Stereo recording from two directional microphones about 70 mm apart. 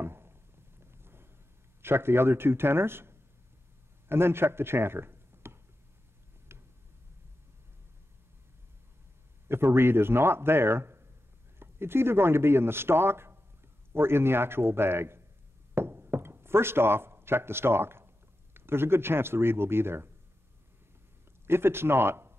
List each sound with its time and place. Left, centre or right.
0.0 s a sound: right
1.8 s speech: right
6.5 s tick: right
9.5 s speech: right
21.5 s speech: right